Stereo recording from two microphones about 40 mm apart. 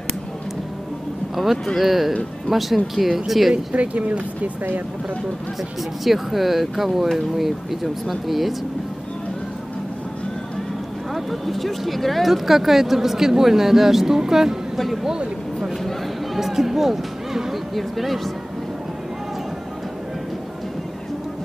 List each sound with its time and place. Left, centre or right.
1.3 s speech: centre
3.7 s speech: right
6.0 s speech: centre
11.1 s speech: centre
16.3 s speech: centre